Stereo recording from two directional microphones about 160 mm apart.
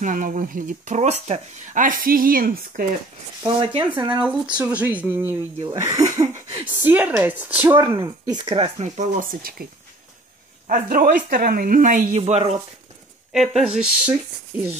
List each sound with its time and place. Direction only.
0.0 s speech: 55° right (ahead or behind)
3.5 s speech: 30° right (ahead or behind)
4.1 s speech: 10° right (ahead or behind)
5.8 s a sound: 20° right (ahead or behind)
6.8 s speech: 10° right (ahead or behind); by 8.6 s 30° right (ahead or behind)
8.7 s speech: 50° right (ahead or behind); by 9.7 s 65° right (ahead or behind)
10.7 s speech: 60° right (ahead or behind)
12.2 s speech: 40° right (ahead or behind)
13.3 s speech: centre (ahead or behind)